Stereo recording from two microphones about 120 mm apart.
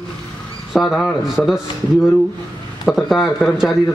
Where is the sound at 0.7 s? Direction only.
Centre (ahead or behind).